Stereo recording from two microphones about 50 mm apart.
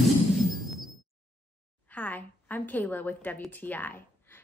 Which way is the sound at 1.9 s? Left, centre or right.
Left.